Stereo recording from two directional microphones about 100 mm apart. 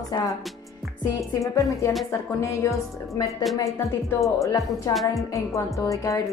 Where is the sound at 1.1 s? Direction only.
35° left (ahead or behind).